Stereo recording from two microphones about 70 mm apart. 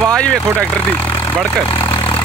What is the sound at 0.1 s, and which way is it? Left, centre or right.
Vehicle, centre.